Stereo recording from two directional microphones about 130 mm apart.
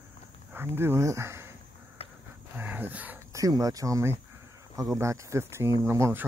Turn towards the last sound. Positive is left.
turn(degrees=-20)  # may be behind; listen again after turning